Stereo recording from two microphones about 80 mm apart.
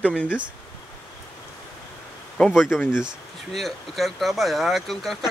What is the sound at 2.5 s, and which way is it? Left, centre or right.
Speech, centre.